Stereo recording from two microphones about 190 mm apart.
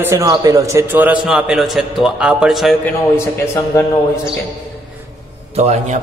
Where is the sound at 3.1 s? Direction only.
15° left (ahead or behind).